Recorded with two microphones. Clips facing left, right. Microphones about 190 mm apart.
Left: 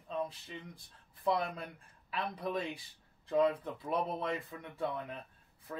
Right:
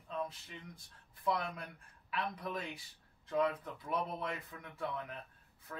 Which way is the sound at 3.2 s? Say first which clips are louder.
Left 4 dB; 25° left (ahead or behind).